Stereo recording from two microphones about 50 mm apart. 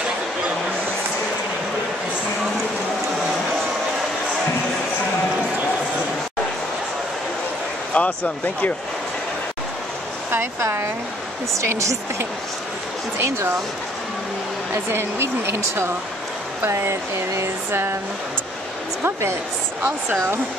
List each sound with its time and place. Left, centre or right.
7.9 s speech: left
10.6 s speech: right
11.5 s speech: right
13.2 s speech: right
14.9 s speech: right
17.6 s speech: right